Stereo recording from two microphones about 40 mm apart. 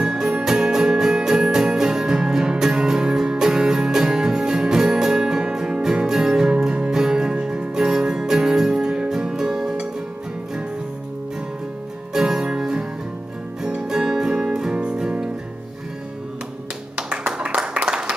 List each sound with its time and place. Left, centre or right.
0.0 s music: right
12.1 s music: centre
13.8 s music: centre
16.9 s tap: right
17.4 s a sound: right